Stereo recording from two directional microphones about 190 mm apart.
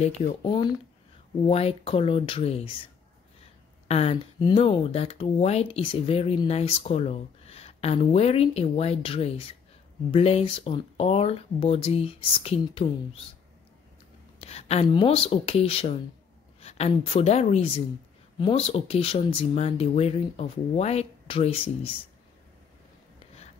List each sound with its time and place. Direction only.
0.0 s speech: 30° left (ahead or behind)
3.8 s speech: 35° left (ahead or behind)
14.4 s speech: 35° left (ahead or behind)